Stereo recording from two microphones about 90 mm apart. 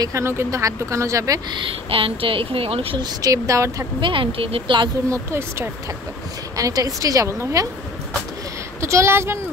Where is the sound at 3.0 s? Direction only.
40° right (ahead or behind).